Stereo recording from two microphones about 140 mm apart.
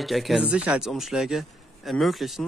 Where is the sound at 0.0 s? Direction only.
Centre (ahead or behind).